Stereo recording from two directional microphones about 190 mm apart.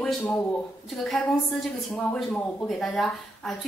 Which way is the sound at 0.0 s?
5° left (ahead or behind).